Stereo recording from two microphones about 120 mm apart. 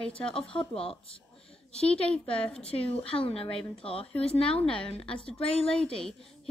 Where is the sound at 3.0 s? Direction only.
50° left (ahead or behind).